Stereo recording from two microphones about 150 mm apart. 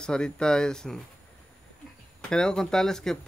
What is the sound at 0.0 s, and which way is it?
Speech, 5° left (ahead or behind).